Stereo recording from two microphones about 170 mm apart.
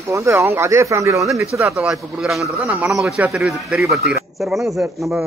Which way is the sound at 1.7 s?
5° right (ahead or behind).